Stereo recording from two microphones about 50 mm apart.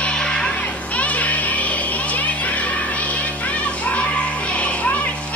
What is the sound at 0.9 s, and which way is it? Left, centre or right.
Children playing, left.